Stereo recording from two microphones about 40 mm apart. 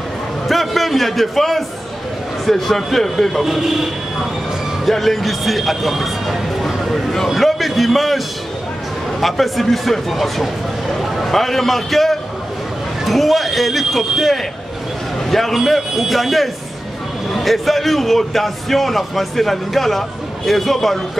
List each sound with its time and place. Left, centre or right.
0.5 s a man's voice: centre
3.4 s a man's voice: centre
4.8 s a man's voice: centre
6.7 s a sound: centre
7.2 s a man's voice: centre
9.2 s a man's voice: centre